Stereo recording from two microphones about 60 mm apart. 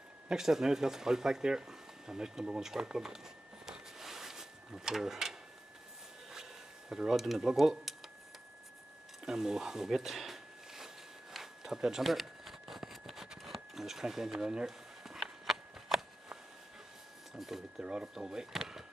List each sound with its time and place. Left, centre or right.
0.3 s speech: centre
3.6 s a sound: centre
6.9 s speech: centre
9.2 s a sound: centre
17.3 s speech: centre
17.8 s speech: centre